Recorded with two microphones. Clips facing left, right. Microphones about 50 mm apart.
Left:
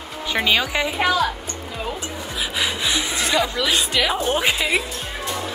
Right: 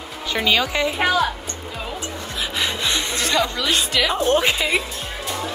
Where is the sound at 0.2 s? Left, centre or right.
Centre.